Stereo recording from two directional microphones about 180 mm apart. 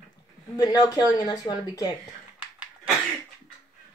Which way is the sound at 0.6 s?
20° left (ahead or behind).